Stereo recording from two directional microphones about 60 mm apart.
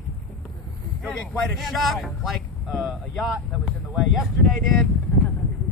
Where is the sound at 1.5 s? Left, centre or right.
Centre.